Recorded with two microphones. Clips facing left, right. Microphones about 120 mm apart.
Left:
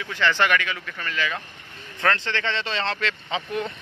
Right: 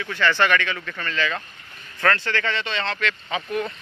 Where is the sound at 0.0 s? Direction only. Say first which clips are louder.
Right 1 dB; 15° left (ahead or behind).